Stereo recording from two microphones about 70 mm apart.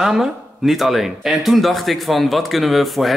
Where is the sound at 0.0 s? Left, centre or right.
Centre.